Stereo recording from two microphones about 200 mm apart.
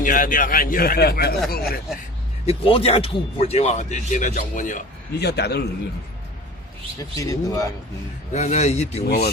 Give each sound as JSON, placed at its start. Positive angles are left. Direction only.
{"t": 0.0, "sound": "speech", "side_deg": 45}
{"t": 2.4, "sound": "speech", "side_deg": 30}
{"t": 5.2, "sound": "a man's voice", "side_deg": 55}
{"t": 7.0, "sound": "speech", "side_deg": 15}
{"t": 8.3, "sound": "speech", "side_deg": 35}
{"t": 9.0, "sound": "speech", "side_deg": 50}